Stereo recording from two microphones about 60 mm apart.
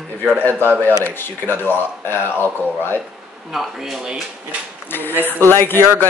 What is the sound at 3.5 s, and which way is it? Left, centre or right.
A woman's voice, centre.